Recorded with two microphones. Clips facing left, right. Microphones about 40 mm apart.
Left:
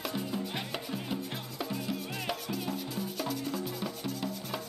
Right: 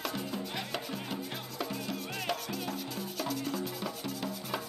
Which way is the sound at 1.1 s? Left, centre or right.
Centre.